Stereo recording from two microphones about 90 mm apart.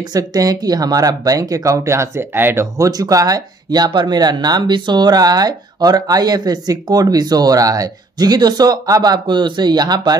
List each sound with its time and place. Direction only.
0.1 s speech: 40° right (ahead or behind)
2.9 s speech: 40° right (ahead or behind)